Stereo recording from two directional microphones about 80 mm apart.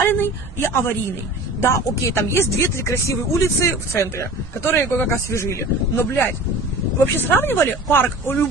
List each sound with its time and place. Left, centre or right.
0.0 s speech: left